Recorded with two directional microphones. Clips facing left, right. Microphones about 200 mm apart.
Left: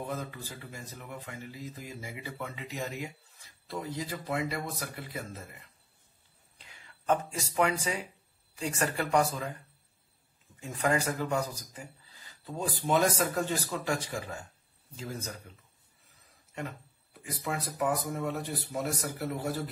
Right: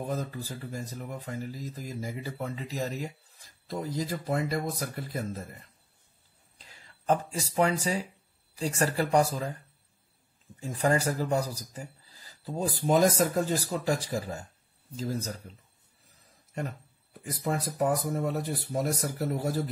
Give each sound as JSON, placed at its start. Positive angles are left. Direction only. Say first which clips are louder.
{"t": 0.0, "sound": "speech", "louder": "right 4 dB", "side_deg": -40}
{"t": 6.6, "sound": "a sound", "louder": "right 3 dB", "side_deg": -35}
{"t": 7.8, "sound": "speech", "louder": "right 4 dB", "side_deg": -35}
{"t": 10.6, "sound": "speech", "louder": "right 3 dB", "side_deg": -35}
{"t": 17.2, "sound": "speech", "louder": "right 4 dB", "side_deg": -40}